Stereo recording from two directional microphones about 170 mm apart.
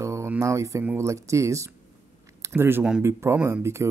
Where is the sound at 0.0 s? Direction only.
15° right (ahead or behind).